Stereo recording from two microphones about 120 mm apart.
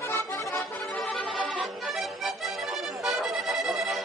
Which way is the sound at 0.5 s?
5° left (ahead or behind).